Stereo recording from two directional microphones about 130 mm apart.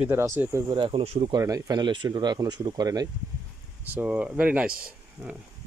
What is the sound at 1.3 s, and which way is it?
Speech, 25° right (ahead or behind).